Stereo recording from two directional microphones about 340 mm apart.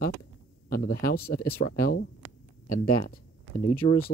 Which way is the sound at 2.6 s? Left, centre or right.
Left.